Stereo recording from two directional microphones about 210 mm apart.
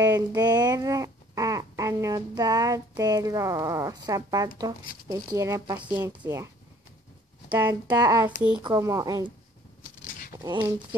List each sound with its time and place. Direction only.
0.0 s speech: 20° right (ahead or behind)
7.5 s speech: 15° right (ahead or behind)
8.4 s speech: 5° right (ahead or behind)
8.6 s speech: 20° right (ahead or behind)
10.0 s a sound: 40° left (ahead or behind)
10.4 s speech: 20° right (ahead or behind)